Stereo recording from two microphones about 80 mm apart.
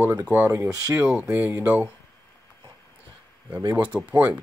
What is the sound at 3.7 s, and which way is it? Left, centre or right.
Speech, right.